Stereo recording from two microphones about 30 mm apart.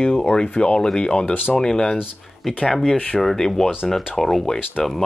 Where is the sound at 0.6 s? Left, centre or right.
Left.